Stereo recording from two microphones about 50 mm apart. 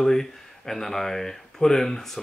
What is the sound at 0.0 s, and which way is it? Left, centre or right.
Speech, centre.